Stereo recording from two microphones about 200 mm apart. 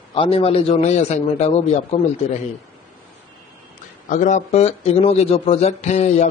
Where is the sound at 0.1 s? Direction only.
25° left (ahead or behind).